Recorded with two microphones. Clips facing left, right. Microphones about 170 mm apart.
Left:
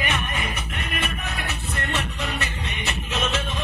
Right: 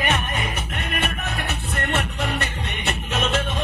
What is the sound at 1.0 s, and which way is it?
Music, 60° right (ahead or behind).